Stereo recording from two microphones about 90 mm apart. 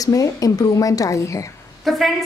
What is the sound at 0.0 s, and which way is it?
A woman's voice, 40° left (ahead or behind).